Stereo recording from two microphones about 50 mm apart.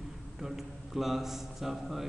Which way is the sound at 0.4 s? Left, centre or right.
Centre.